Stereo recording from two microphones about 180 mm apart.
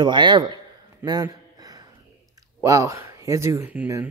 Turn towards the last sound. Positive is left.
turn(degrees=-15)  # may be behind; listen again after turning